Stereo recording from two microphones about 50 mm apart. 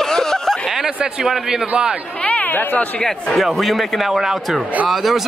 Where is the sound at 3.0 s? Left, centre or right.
Centre.